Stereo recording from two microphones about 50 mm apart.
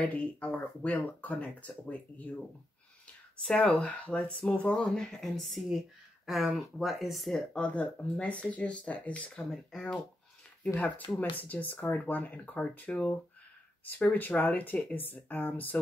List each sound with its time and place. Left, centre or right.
0.0 s speech: left
3.4 s speech: left
4.7 s speech: centre
7.3 s speech: left
9.7 s speech: centre
11.1 s speech: left